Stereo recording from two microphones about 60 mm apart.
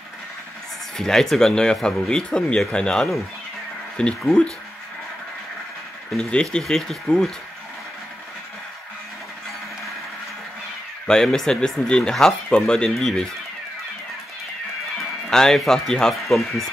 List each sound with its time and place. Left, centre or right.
0.9 s speech: centre
6.3 s speech: centre
11.1 s speech: centre
15.0 s speech: centre